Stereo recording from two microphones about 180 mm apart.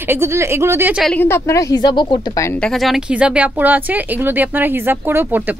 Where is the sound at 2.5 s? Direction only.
5° left (ahead or behind).